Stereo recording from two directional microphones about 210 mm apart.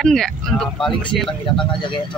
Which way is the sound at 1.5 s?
20° left (ahead or behind).